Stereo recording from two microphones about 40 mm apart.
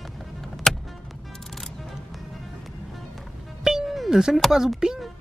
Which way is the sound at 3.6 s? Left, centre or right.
Centre.